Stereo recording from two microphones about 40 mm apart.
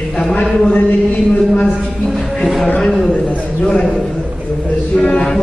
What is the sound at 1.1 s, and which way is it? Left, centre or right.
Speech, left.